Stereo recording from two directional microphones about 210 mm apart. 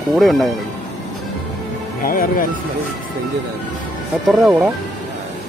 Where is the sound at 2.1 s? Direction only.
45° left (ahead or behind).